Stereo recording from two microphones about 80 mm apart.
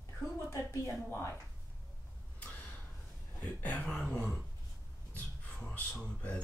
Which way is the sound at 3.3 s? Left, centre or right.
Centre.